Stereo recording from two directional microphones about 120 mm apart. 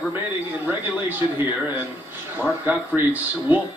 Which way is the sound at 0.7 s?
15° right (ahead or behind).